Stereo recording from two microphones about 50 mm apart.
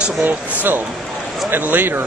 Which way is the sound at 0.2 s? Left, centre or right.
Right.